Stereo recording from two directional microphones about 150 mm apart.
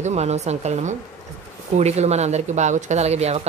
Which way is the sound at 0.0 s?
45° right (ahead or behind).